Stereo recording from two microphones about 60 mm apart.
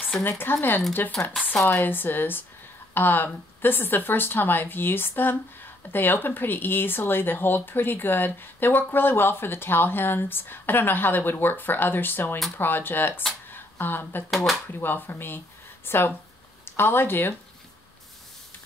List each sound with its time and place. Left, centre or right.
0.2 s speech: left
1.6 s speech: left
1.9 s speech: left
13.5 s a sound: left
14.3 s speech: centre
14.7 s speech: left